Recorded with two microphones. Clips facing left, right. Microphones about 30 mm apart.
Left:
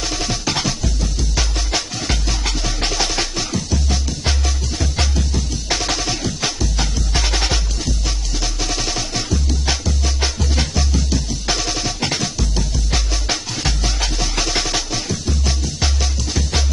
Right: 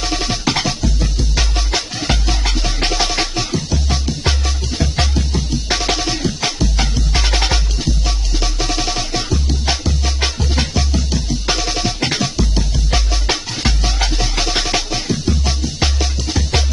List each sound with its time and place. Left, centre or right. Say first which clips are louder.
0.1 s music: right 5 dB; right